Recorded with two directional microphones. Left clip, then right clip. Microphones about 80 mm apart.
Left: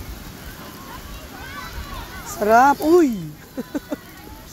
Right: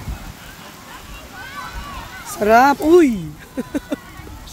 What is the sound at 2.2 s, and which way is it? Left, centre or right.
Speech, right.